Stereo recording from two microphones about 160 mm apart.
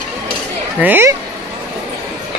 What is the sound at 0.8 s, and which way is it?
Speech, 10° right (ahead or behind).